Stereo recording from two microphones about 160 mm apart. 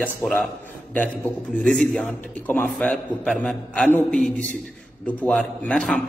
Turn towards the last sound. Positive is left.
turn(degrees=5)  # may be behind; listen again after turning